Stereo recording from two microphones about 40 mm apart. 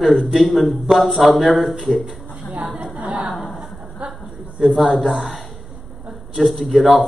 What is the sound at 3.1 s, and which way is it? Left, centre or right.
Choir, right.